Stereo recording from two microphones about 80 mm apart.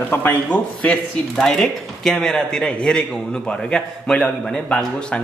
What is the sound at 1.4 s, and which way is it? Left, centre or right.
A man's voice, centre.